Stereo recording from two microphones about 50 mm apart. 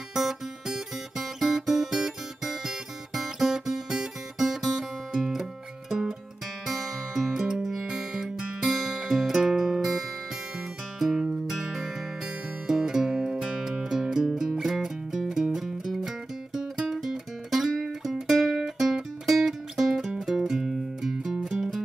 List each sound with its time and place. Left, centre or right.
0.1 s guitar: centre
6.6 s music: centre